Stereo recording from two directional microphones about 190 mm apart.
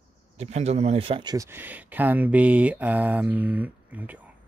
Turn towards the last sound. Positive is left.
turn(degrees=-10)  # may be behind; listen again after turning